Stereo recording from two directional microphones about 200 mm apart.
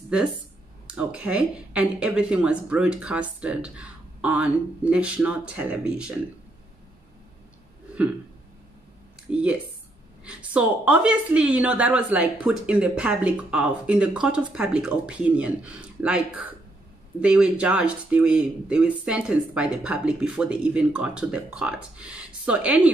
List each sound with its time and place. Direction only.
0.8 s a woman's voice: 5° right (ahead or behind)
9.3 s a woman's voice: 5° right (ahead or behind)